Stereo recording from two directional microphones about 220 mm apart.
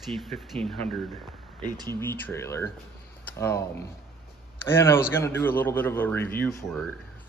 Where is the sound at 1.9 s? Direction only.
10° left (ahead or behind).